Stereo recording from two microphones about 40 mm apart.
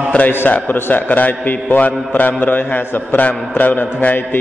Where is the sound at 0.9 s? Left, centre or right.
Left.